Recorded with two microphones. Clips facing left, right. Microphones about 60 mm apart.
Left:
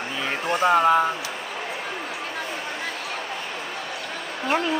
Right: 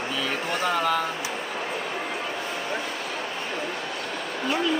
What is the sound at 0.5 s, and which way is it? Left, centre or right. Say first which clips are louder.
Speech: left 8 dB; left.